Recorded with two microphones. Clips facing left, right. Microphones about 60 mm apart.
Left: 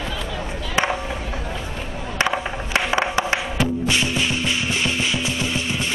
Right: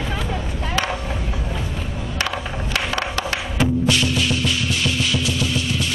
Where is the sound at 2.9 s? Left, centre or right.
Left.